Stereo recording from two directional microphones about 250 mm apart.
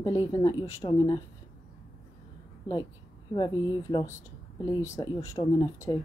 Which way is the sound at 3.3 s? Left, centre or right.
Centre.